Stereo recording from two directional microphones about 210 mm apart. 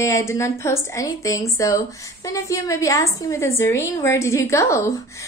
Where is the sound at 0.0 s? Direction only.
15° left (ahead or behind).